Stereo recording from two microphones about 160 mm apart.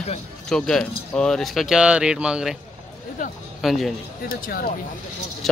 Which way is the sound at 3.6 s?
Centre (ahead or behind).